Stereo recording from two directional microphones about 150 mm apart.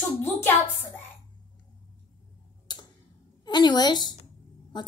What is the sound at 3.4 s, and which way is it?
A woman's voice, 30° left (ahead or behind).